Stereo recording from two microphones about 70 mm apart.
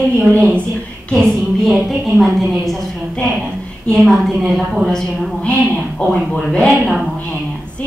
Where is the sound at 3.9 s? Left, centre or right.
Centre.